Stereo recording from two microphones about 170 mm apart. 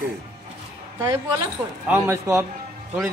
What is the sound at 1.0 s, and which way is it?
A woman's voice, 20° right (ahead or behind).